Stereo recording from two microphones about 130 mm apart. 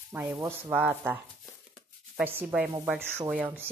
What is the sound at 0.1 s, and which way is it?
A woman's voice, 15° right (ahead or behind).